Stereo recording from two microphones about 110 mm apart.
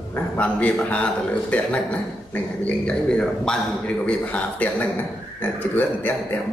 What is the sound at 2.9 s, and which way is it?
A man's voice, 10° left (ahead or behind).